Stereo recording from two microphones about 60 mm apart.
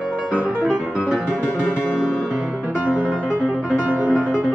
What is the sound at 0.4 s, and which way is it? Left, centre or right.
Music, centre.